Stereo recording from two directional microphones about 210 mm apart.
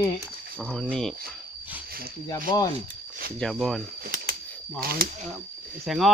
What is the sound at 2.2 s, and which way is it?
Speech, 15° left (ahead or behind).